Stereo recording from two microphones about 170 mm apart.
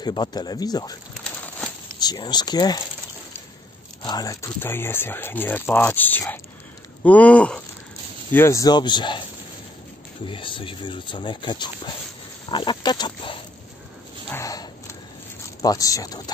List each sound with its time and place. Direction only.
0.0 s speech: 25° left (ahead or behind)
2.0 s speech: 25° left (ahead or behind)
4.0 s speech: 25° left (ahead or behind)
10.2 s speech: 30° left (ahead or behind)
14.3 s a sound: 20° left (ahead or behind)
15.6 s speech: 20° left (ahead or behind)